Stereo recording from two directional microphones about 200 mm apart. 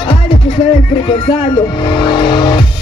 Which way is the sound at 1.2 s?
25° left (ahead or behind).